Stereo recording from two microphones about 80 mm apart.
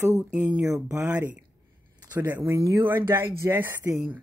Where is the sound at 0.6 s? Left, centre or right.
Right.